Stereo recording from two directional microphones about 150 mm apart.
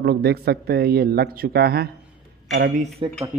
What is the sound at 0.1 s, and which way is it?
Speech, 90° right.